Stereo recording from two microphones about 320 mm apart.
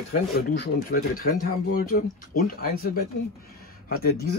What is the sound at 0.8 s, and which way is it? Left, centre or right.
Speech, left.